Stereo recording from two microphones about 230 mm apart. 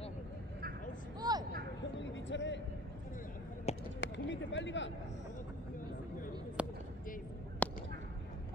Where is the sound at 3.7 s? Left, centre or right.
Left.